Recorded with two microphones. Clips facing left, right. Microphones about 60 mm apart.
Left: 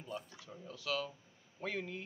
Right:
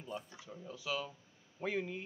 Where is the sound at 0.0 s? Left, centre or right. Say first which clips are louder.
Even; centre.